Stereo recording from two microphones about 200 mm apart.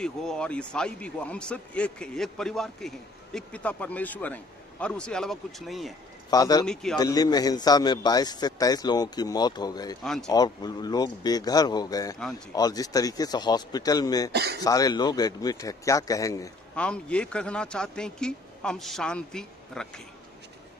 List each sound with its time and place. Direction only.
0.0 s speech: 5° left (ahead or behind)
6.3 s speech: 20° left (ahead or behind)
6.6 s speech: 5° left (ahead or behind)
7.0 s a man's voice: 20° left (ahead or behind)
10.0 s speech: centre (ahead or behind)
10.3 s a man's voice: 20° left (ahead or behind)
14.3 s speech: 55° right (ahead or behind)
14.6 s speech: 20° left (ahead or behind)
16.7 s speech: 5° left (ahead or behind)